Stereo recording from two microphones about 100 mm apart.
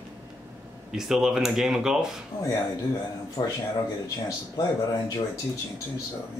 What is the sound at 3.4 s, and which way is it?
Speech, 45° left (ahead or behind).